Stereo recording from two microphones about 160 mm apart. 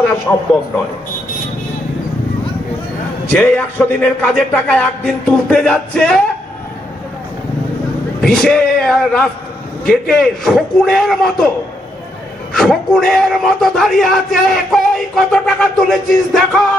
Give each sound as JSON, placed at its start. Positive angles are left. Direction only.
{"t": 0.3, "sound": "speech", "side_deg": 10}
{"t": 3.3, "sound": "speech", "side_deg": 10}
{"t": 8.2, "sound": "a man's voice", "side_deg": 5}
{"t": 12.5, "sound": "a man's voice", "side_deg": 0}